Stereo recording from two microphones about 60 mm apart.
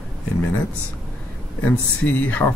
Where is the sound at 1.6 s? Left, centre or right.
Left.